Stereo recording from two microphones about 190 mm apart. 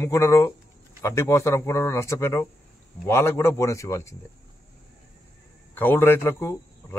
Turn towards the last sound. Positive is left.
turn(degrees=10)  # may be behind; listen again after turning